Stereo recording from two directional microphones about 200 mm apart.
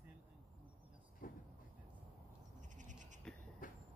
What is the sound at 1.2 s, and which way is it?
Vehicle, 45° left (ahead or behind).